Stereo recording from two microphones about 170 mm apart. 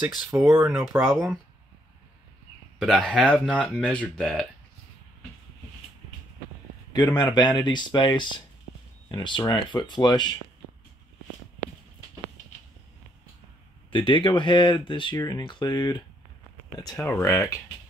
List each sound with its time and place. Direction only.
0.5 s speech: 15° right (ahead or behind)
1.0 s speech: centre (ahead or behind)
2.8 s speech: centre (ahead or behind)
6.9 s speech: 25° left (ahead or behind)
13.9 s speech: 30° left (ahead or behind)
16.9 s speech: 10° left (ahead or behind)